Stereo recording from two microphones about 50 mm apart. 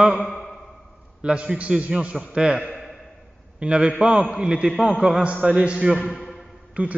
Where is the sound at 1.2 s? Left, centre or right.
Right.